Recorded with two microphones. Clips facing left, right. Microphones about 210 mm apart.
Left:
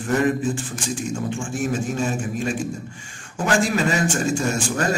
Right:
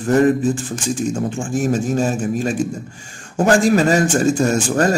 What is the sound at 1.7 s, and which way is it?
Speech, 40° right (ahead or behind).